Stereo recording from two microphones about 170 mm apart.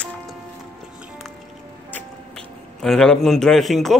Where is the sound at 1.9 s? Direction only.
5° left (ahead or behind).